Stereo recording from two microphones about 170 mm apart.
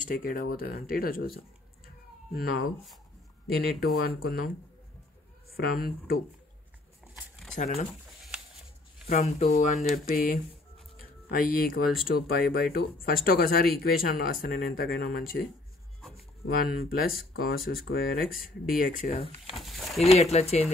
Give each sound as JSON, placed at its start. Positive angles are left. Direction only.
{"t": 0.0, "sound": "speech", "side_deg": 55}
{"t": 5.6, "sound": "speech", "side_deg": 60}
{"t": 7.5, "sound": "speech", "side_deg": 45}
{"t": 9.0, "sound": "speech", "side_deg": 40}
{"t": 16.4, "sound": "speech", "side_deg": 60}
{"t": 19.5, "sound": "speech", "side_deg": 0}
{"t": 20.1, "sound": "speech", "side_deg": 40}